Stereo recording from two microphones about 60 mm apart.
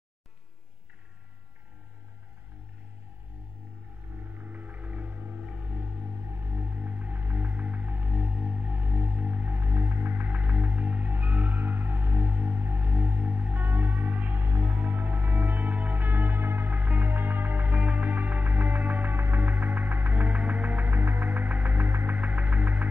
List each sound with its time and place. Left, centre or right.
4.4 s music: right
5.5 s music: centre
6.3 s music: right
14.8 s music: right